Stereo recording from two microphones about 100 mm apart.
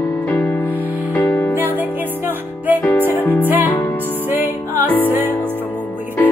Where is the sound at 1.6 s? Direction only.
20° right (ahead or behind).